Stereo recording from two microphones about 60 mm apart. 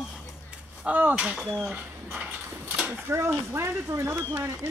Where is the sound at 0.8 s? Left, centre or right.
Right.